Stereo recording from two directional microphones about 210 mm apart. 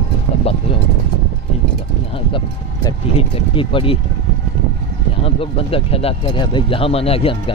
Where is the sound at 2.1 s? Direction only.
25° left (ahead or behind).